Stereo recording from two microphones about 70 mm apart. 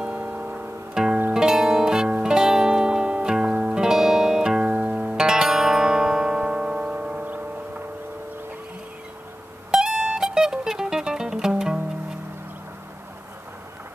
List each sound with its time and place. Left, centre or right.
0.0 s music: centre
7.2 s a sound: right
9.7 s music: centre